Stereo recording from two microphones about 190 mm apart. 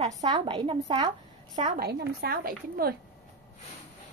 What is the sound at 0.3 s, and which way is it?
A woman's voice, 25° right (ahead or behind).